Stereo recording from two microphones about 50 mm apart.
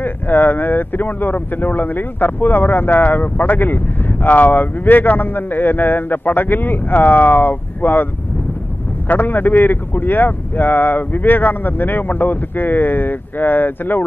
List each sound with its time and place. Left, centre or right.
0.0 s speech: left